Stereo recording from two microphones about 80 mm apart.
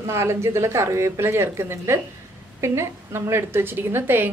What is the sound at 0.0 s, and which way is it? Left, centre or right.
A woman's voice, right.